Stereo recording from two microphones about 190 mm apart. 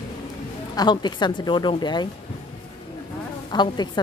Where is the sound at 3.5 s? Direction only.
20° left (ahead or behind).